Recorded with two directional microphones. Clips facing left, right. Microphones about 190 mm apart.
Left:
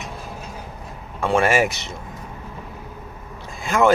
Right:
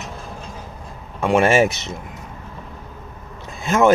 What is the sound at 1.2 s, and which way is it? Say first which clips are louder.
Speech: right 3 dB; 20° right (ahead or behind).